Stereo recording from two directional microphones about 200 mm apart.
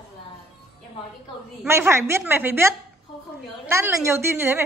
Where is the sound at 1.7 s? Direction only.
15° right (ahead or behind).